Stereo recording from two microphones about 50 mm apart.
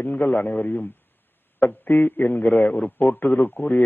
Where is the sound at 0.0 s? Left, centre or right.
Left.